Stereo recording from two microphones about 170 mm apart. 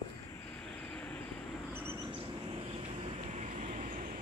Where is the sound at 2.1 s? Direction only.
30° right (ahead or behind); by 4.2 s 45° right (ahead or behind).